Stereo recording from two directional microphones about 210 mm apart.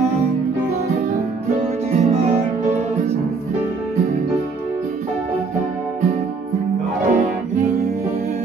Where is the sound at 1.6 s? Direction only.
30° right (ahead or behind).